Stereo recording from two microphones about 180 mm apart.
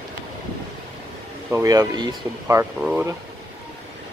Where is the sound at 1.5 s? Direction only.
20° right (ahead or behind).